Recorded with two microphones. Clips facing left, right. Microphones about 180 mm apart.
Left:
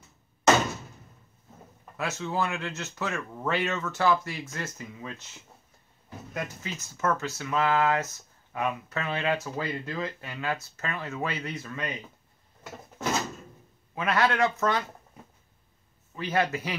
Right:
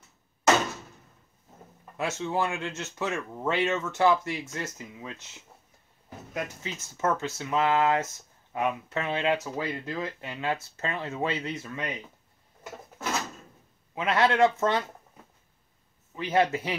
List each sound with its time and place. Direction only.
2.0 s speech: 25° right (ahead or behind)
13.9 s speech: 25° right (ahead or behind)
16.2 s speech: 20° right (ahead or behind)